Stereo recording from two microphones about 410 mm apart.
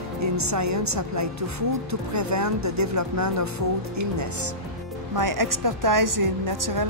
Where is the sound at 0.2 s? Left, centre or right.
Right.